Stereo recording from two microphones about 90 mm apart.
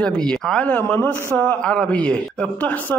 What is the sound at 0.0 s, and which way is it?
A man's voice, 10° left (ahead or behind).